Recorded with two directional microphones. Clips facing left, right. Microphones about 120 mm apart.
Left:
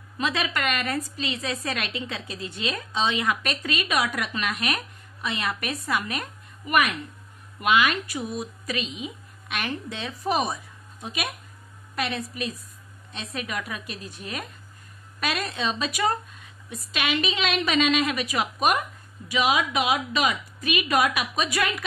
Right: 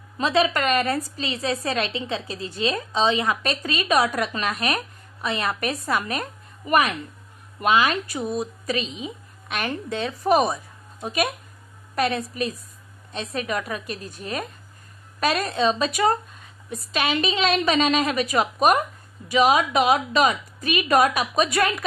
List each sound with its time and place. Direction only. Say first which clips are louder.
0.2 s a woman's voice: right 6 dB; 35° right (ahead or behind)
7.6 s a woman's voice: right 2 dB; 35° right (ahead or behind)